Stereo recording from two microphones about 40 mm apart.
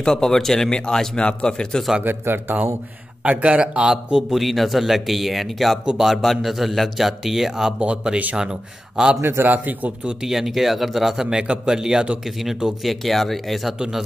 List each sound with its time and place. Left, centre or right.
0.0 s speech: centre
2.0 s speech: right
3.3 s a man's voice: right; by 7.7 s centre
8.0 s a man's voice: right
9.2 s a man's voice: right
9.5 s speech: right
10.2 s a man's voice: centre
11.2 s speech: centre
12.8 s a man's voice: centre
13.7 s speech: centre